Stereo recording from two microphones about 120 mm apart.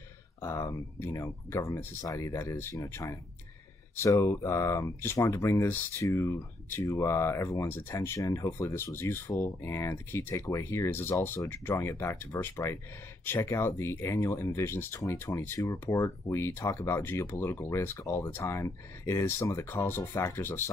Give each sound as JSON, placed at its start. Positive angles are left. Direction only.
{"t": 0.4, "sound": "speech", "side_deg": 25}